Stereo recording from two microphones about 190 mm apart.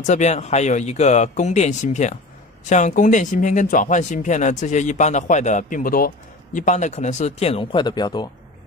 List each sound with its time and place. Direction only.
0.0 s speech: 35° left (ahead or behind)